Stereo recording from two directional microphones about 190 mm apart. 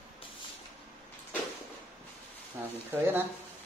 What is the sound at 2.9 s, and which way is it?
Speech, 10° right (ahead or behind).